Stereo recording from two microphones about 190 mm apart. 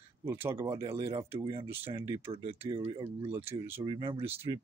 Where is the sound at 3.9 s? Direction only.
25° right (ahead or behind).